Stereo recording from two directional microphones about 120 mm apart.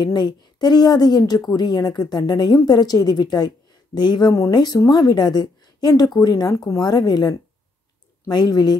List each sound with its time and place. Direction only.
0.0 s speech: 35° left (ahead or behind)